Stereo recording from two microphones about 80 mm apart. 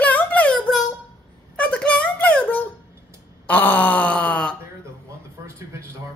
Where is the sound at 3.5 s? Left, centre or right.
Left.